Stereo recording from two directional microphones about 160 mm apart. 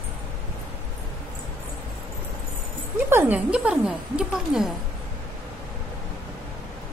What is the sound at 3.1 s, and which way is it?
Speech, 10° right (ahead or behind).